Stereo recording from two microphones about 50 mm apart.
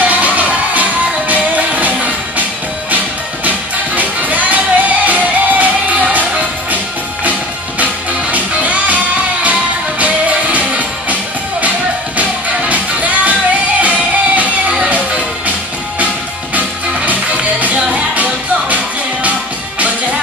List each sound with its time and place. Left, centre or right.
0.0 s music: right
3.4 s music: right
7.8 s music: right
12.2 s music: right
16.5 s music: right